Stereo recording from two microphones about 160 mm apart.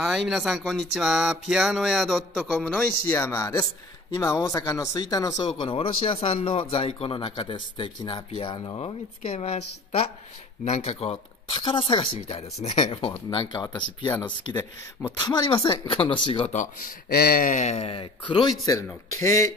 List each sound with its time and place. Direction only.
0.0 s a sound: centre (ahead or behind); by 3.6 s 15° left (ahead or behind)
4.2 s speech: 20° left (ahead or behind)
5.6 s speech: 35° left (ahead or behind)
15.1 s speech: 25° left (ahead or behind); by 16.9 s 45° left (ahead or behind)
17.1 s speech: 70° left (ahead or behind); by 18.5 s 35° left (ahead or behind)
19.1 s speech: 20° left (ahead or behind)